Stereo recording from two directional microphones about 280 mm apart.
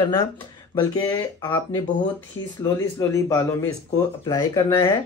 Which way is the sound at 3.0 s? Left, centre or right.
Centre.